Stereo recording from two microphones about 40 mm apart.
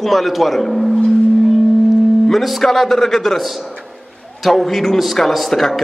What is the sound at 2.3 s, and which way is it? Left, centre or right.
A man's voice, centre.